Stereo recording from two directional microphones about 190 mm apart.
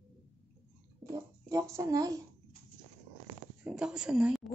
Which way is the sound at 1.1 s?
20° right (ahead or behind).